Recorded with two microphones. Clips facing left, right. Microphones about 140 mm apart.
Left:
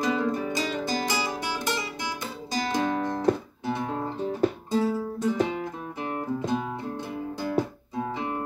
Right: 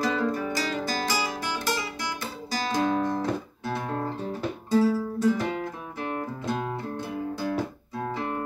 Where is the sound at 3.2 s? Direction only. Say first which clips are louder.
Left 4 dB; 20° left (ahead or behind).